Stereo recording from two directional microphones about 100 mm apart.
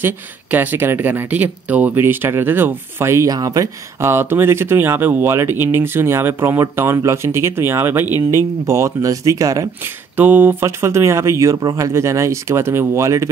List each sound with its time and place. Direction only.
0.0 s speech: 20° right (ahead or behind); by 3.6 s 40° right (ahead or behind)
4.0 s speech: 25° right (ahead or behind)
10.1 s speech: 20° right (ahead or behind)